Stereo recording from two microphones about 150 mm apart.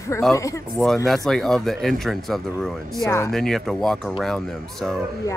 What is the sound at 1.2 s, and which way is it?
Speech, centre (ahead or behind).